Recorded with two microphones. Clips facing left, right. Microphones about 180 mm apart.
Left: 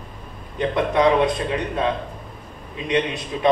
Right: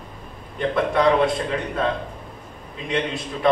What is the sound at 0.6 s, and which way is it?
A man's voice, 20° left (ahead or behind).